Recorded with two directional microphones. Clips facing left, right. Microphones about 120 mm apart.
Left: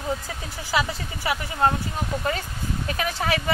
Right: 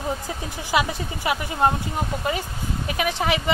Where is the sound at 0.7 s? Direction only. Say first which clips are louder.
Right 2 dB; 20° right (ahead or behind).